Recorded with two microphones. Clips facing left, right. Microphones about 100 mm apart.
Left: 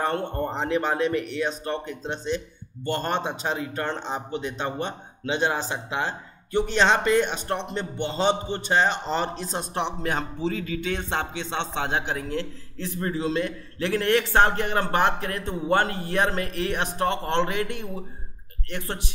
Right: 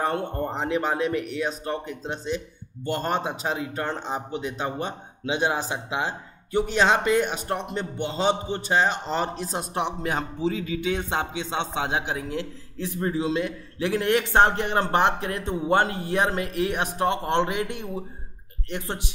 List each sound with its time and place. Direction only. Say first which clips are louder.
0.0 s speech: even; 5° right (ahead or behind)